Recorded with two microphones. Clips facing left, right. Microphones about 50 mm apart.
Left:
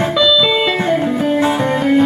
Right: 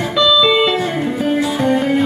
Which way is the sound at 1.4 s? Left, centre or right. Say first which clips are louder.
Left 1 dB; left.